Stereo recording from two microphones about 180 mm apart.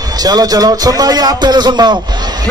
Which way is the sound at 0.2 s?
20° right (ahead or behind).